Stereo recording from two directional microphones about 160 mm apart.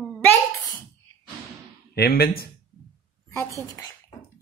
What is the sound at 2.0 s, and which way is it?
Speech, 75° left (ahead or behind).